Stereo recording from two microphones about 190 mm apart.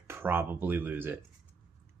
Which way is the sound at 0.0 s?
10° right (ahead or behind).